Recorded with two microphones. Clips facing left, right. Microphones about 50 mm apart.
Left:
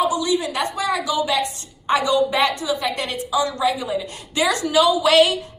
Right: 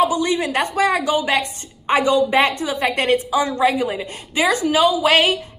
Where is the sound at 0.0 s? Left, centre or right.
Right.